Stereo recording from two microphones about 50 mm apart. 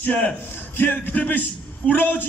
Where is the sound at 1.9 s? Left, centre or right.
Left.